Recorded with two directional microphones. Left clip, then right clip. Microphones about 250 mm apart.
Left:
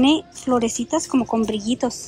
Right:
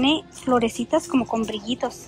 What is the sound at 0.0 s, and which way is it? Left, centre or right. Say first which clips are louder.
Speech: left 3 dB; centre.